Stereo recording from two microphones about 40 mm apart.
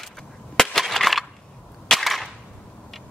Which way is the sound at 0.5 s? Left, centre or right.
Centre.